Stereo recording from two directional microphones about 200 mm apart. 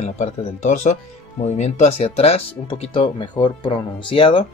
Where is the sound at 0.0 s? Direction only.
35° left (ahead or behind).